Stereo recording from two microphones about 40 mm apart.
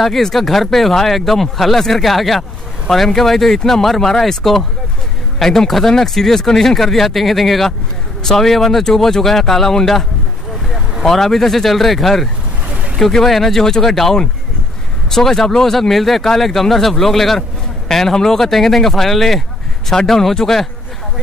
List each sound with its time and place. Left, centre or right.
0.0 s speech: centre
11.1 s speech: centre
12.6 s vehicle: right
13.1 s speech: centre